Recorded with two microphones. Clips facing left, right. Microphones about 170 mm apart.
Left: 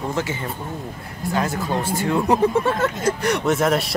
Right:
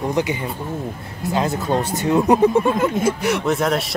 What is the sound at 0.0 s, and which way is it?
Speech, 15° right (ahead or behind).